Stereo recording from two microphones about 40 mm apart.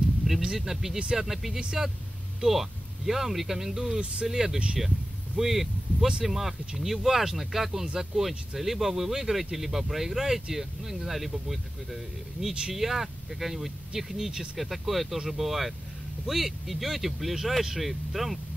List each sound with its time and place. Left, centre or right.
0.3 s speech: centre
7.8 s speech: centre
8.2 s speech: centre
14.6 s speech: centre